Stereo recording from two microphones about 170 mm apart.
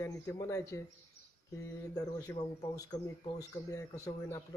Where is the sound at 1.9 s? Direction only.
20° left (ahead or behind).